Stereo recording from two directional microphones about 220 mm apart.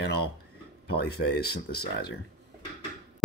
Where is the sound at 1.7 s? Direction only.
45° left (ahead or behind).